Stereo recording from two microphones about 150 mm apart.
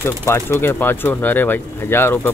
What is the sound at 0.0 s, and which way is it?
Speech, 15° left (ahead or behind).